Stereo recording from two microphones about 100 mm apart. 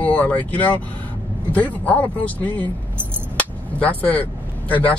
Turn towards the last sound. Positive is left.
turn(degrees=15)  # may be behind; listen again after turning